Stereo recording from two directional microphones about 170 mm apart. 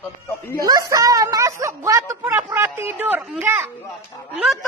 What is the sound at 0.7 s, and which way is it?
Speech, 20° right (ahead or behind).